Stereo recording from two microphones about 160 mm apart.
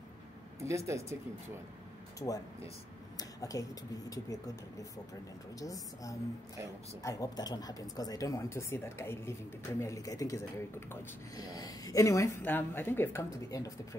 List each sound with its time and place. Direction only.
0.6 s speech: 20° right (ahead or behind)
2.1 s speech: 20° left (ahead or behind)
3.2 s a sound: 20° left (ahead or behind)
5.6 s a woman's voice: 20° left (ahead or behind)